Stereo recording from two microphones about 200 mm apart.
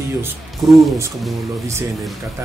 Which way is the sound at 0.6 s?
15° right (ahead or behind).